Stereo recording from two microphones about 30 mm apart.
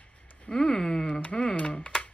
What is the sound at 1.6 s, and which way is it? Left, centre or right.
Speech, left.